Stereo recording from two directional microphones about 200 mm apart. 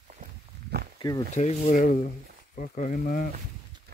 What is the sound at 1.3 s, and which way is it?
Speech, 35° left (ahead or behind).